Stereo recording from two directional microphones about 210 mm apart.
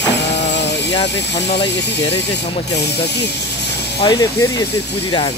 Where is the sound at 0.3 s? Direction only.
55° left (ahead or behind).